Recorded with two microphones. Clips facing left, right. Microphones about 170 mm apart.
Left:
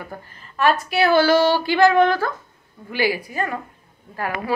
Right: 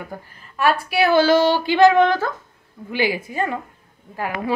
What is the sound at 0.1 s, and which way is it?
A woman's voice, 15° right (ahead or behind).